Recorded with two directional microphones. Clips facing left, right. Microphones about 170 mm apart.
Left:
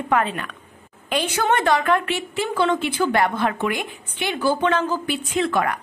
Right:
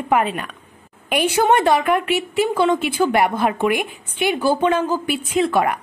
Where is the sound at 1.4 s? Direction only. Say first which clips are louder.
Right 2 dB; 20° right (ahead or behind).